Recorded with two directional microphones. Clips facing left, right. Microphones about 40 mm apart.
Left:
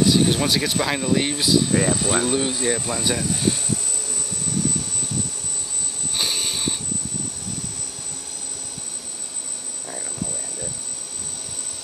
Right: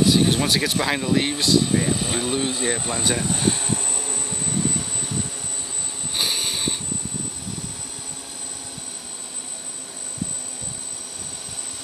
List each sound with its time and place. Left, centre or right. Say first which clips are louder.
0.0 s speech: even; centre; by 3.1 s right
3.2 s vehicle: even; right
6.1 s a sound: right 1 dB; centre